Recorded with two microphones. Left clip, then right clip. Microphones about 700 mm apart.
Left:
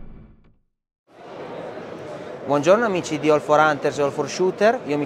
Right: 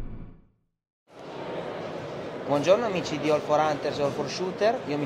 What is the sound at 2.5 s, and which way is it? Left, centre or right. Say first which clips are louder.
A man's voice: left 5 dB; left.